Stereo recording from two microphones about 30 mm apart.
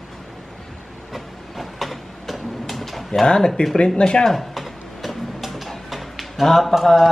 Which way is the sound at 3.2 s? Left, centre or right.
Left.